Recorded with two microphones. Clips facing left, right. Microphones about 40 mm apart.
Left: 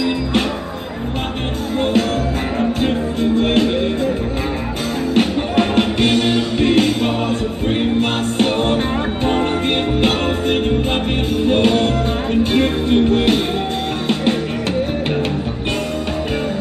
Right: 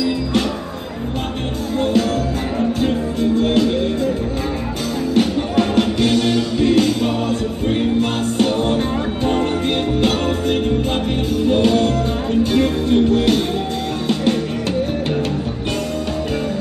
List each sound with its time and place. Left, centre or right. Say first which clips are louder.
1.8 s music: even; left
5.1 s music: even; left